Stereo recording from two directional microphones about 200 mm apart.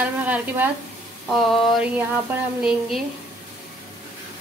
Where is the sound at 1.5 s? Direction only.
5° right (ahead or behind).